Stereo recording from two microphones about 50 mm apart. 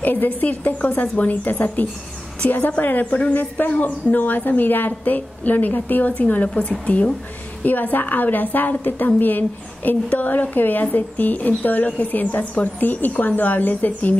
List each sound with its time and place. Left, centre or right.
0.0 s a woman's voice: left